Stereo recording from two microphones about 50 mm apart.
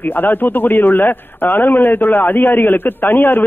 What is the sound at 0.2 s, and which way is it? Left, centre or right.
A man's voice, left.